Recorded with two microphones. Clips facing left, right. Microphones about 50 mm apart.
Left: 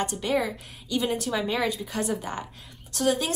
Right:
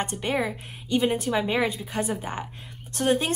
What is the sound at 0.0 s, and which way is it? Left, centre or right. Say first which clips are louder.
A woman's voice: left 1 dB; right.